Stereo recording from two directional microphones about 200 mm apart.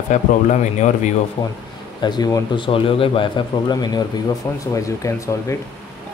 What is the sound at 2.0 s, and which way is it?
A man's voice, 20° left (ahead or behind).